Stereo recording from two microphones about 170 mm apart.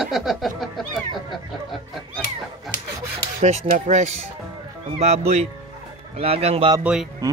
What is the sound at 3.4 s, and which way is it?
Speech, 45° right (ahead or behind).